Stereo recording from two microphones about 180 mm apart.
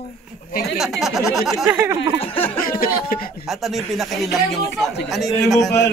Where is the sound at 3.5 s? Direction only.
Centre (ahead or behind).